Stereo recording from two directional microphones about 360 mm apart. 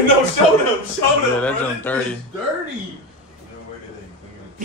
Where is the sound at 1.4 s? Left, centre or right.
Centre.